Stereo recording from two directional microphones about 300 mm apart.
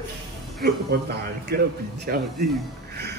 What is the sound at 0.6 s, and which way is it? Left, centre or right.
A man's voice, right.